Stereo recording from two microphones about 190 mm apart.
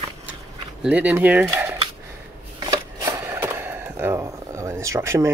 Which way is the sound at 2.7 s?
15° right (ahead or behind).